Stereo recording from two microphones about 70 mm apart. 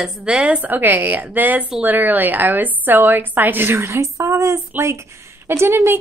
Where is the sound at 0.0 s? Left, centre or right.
Centre.